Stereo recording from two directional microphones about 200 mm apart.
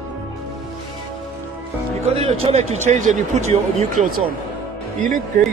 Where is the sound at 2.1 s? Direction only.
30° right (ahead or behind).